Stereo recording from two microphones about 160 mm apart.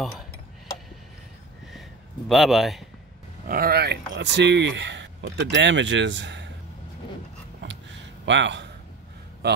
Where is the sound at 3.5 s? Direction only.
65° right (ahead or behind); by 6.5 s 90° right.